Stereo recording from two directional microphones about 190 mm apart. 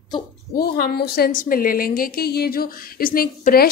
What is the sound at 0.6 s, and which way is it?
A woman's voice, 55° left (ahead or behind).